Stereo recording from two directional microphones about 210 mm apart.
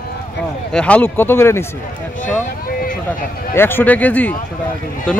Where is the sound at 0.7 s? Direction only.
5° left (ahead or behind).